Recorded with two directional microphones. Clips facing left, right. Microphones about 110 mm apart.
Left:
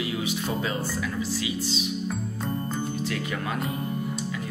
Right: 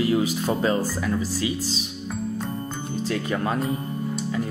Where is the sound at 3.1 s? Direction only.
35° right (ahead or behind).